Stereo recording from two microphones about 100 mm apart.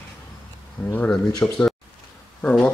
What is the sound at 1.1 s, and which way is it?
Speech, 5° left (ahead or behind).